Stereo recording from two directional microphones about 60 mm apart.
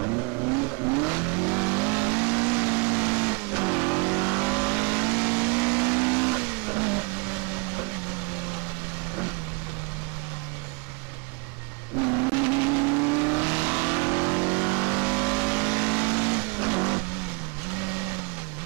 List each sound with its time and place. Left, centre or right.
0.0 s vehicle: centre
12.0 s vehicle: right